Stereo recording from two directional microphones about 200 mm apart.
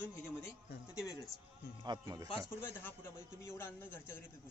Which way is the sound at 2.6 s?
10° left (ahead or behind).